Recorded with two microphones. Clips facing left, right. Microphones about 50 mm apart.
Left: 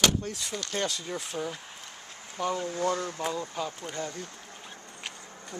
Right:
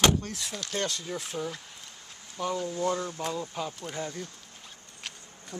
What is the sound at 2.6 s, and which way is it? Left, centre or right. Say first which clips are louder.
Speech: even; left.